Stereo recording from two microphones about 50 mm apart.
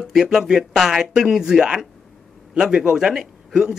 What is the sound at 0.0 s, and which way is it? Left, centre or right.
A man's voice, centre.